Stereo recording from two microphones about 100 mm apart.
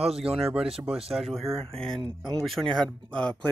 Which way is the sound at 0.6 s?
5° right (ahead or behind).